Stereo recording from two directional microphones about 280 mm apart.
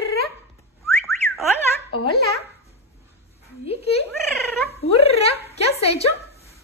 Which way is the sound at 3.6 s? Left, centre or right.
Left.